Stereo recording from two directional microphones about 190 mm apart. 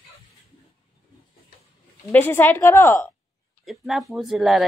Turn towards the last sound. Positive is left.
turn(degrees=0)  # may be behind; listen again after turning